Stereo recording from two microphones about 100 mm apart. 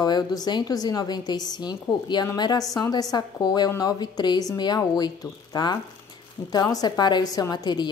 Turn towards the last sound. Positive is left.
turn(degrees=45)  # may be behind; listen again after turning